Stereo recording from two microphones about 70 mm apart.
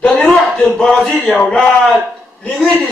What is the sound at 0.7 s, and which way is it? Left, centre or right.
Speech, centre.